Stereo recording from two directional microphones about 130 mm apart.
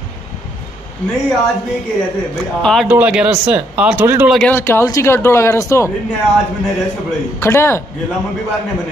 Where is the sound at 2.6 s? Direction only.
5° left (ahead or behind).